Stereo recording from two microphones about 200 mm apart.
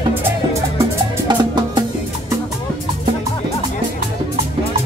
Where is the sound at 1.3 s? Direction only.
20° right (ahead or behind).